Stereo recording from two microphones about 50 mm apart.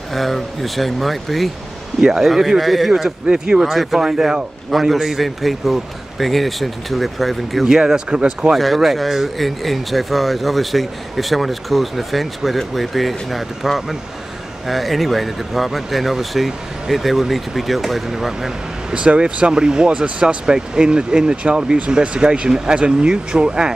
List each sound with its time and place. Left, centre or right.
0.1 s speech: centre
2.0 s speech: centre
2.9 s speech: centre
3.7 s speech: centre
7.6 s speech: centre
8.5 s speech: centre
18.9 s speech: centre